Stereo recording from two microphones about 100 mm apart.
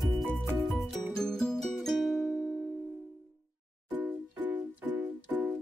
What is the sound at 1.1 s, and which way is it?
Music, 5° left (ahead or behind).